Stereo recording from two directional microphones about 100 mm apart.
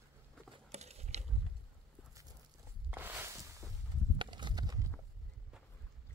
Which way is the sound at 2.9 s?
20° right (ahead or behind).